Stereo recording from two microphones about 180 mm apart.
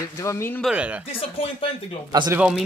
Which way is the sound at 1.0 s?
30° left (ahead or behind).